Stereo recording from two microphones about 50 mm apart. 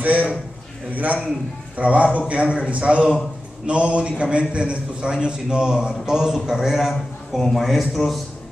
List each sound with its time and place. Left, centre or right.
0.0 s a man's voice: right
1.8 s a man's voice: right; by 8.2 s centre